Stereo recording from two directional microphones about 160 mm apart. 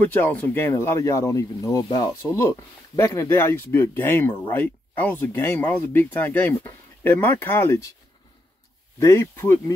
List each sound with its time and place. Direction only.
0.0 s speech: 10° left (ahead or behind)
9.0 s speech: 15° left (ahead or behind)